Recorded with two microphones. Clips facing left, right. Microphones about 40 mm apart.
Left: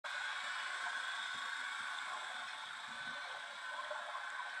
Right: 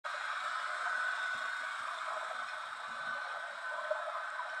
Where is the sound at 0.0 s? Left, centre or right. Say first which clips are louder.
Right 4 dB; right.